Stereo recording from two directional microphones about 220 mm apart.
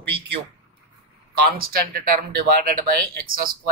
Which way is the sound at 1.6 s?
40° right (ahead or behind).